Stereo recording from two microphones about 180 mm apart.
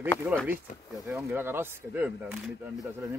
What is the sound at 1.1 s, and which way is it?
Speech, 10° right (ahead or behind).